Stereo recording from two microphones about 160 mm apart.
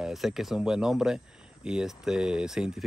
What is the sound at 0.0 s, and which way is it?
Speech, centre (ahead or behind).